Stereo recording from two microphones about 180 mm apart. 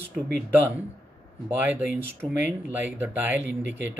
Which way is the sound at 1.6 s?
10° right (ahead or behind).